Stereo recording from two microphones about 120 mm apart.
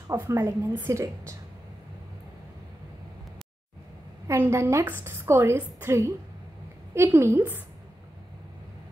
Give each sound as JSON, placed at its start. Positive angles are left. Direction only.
{"t": 0.4, "sound": "a woman's voice", "side_deg": -20}
{"t": 4.3, "sound": "a woman's voice", "side_deg": -25}